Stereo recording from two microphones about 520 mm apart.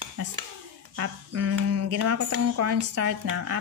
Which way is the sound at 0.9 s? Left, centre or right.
Right.